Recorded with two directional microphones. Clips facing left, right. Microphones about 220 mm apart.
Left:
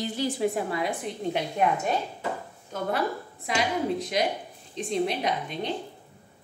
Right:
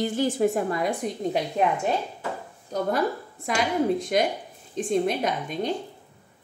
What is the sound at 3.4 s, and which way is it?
A woman's voice, 45° right (ahead or behind).